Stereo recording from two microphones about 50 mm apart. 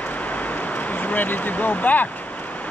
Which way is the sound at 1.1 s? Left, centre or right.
Left.